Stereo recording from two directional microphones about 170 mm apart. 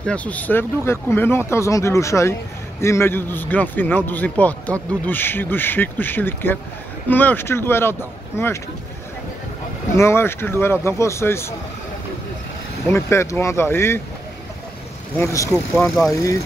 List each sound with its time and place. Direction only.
0.0 s a man's voice: 10° left (ahead or behind)
9.9 s a man's voice: 15° left (ahead or behind)
12.8 s a man's voice: 15° left (ahead or behind)
15.1 s a man's voice: 20° left (ahead or behind)